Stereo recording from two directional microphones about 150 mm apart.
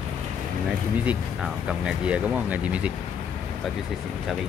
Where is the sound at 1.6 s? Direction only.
10° right (ahead or behind).